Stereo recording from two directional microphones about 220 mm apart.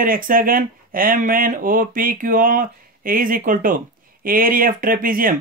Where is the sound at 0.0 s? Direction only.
40° right (ahead or behind).